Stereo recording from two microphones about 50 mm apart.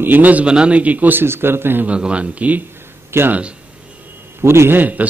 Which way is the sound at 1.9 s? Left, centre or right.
Right.